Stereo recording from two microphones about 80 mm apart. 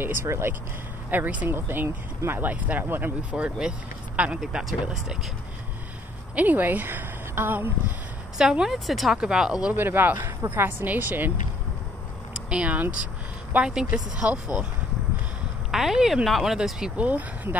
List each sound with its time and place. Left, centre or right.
0.0 s speech: right
1.1 s speech: right
6.3 s a woman's voice: right
8.4 s speech: centre
9.8 s speech: right
12.4 s speech: centre
15.7 s speech: centre